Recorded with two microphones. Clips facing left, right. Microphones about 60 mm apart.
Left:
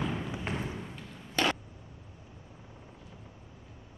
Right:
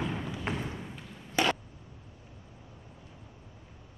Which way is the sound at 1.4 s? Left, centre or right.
Centre.